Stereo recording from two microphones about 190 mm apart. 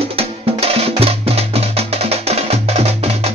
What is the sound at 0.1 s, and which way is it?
Music, 30° right (ahead or behind).